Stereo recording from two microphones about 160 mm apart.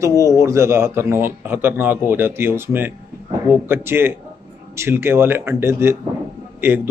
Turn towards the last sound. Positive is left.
turn(degrees=-15)  # may be behind; listen again after turning